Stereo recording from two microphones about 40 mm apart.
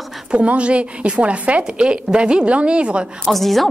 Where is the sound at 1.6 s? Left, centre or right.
Right.